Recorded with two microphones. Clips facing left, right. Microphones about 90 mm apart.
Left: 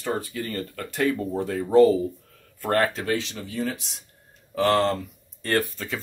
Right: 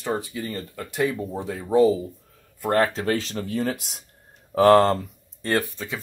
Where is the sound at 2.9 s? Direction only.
35° right (ahead or behind).